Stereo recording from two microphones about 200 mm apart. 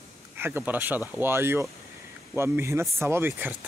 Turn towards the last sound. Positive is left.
turn(degrees=-10)  # may be behind; listen again after turning